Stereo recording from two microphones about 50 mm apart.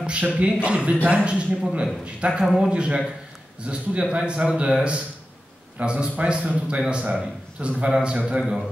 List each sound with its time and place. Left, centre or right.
0.0 s a man's voice: right
2.4 s speech: centre
2.7 s a man's voice: right
8.4 s speech: centre